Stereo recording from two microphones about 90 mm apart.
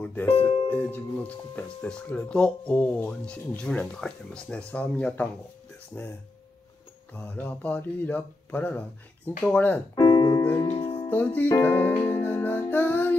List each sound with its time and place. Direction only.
0.0 s speech: 20° left (ahead or behind)
0.3 s speech: 85° left
0.7 s speech: 20° left (ahead or behind)
7.2 s speech: 20° left (ahead or behind)
9.9 s piano: 55° left (ahead or behind)
10.7 s music: 90° left
11.1 s music: 20° left (ahead or behind)